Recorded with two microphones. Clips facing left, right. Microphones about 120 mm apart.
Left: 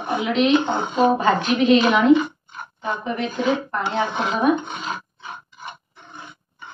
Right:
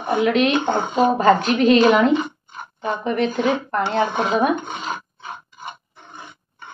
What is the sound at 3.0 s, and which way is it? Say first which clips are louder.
Speech: right 6 dB; 55° right (ahead or behind).